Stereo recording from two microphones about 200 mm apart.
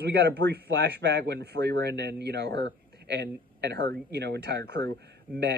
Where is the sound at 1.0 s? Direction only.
60° right (ahead or behind).